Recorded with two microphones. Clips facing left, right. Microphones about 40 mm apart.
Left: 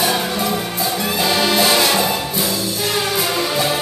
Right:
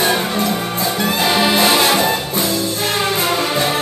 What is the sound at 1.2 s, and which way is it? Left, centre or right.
Brass instrument, right.